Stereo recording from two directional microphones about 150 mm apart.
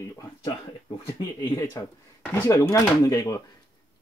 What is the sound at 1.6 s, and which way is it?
Speech, 15° left (ahead or behind).